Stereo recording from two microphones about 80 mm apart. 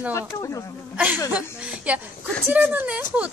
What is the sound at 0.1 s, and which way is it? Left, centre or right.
Speech, left.